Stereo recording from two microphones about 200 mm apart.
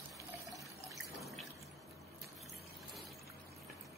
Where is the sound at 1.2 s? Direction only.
Centre (ahead or behind).